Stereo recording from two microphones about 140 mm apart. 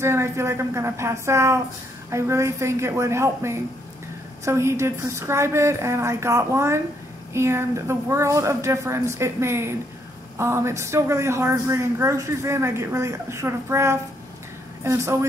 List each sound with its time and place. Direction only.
0.0 s a woman's voice: 20° right (ahead or behind)